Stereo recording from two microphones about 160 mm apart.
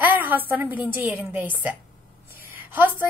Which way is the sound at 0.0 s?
10° right (ahead or behind).